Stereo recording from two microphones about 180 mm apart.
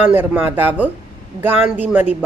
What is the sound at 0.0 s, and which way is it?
A woman's voice, 10° right (ahead or behind).